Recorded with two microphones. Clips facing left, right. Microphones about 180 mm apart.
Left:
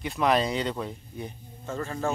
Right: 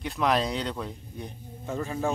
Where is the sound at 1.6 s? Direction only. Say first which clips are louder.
Right 1 dB; 15° right (ahead or behind).